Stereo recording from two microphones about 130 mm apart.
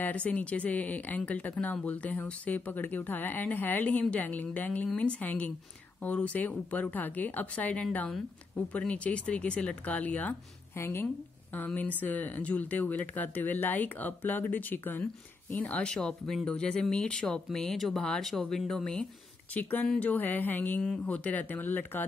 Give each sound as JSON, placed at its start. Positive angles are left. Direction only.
{"t": 0.0, "sound": "speech", "side_deg": 10}